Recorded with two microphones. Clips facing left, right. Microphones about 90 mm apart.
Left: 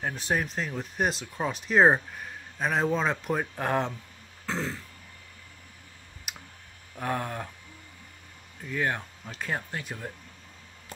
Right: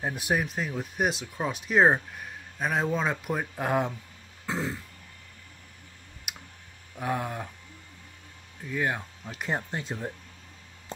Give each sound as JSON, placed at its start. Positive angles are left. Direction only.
{"t": 0.0, "sound": "speech", "side_deg": -10}
{"t": 4.5, "sound": "throat clearing", "side_deg": -10}
{"t": 6.3, "sound": "clicking", "side_deg": -5}
{"t": 7.0, "sound": "speech", "side_deg": -5}
{"t": 8.6, "sound": "speech", "side_deg": -5}
{"t": 9.4, "sound": "speech", "side_deg": -20}